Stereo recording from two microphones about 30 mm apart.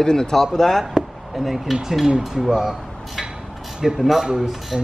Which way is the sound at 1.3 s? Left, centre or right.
Centre.